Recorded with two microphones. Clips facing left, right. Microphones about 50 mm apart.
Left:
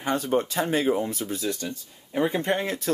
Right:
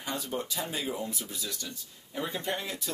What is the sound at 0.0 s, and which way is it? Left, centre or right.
Speech, left.